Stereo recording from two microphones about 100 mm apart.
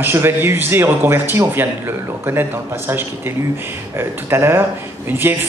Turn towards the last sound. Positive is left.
turn(degrees=-20)  # may be behind; listen again after turning